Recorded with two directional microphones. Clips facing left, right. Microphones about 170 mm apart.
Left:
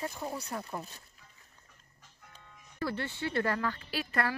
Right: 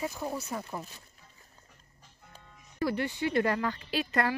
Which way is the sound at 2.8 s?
15° right (ahead or behind).